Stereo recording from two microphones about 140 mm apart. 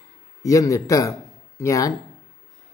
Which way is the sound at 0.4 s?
25° left (ahead or behind).